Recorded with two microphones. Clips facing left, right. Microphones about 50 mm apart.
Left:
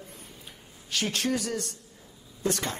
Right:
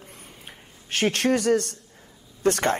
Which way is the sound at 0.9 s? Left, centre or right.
Right.